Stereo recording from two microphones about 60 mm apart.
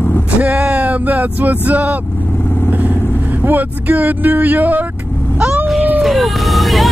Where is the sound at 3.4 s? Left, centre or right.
Right.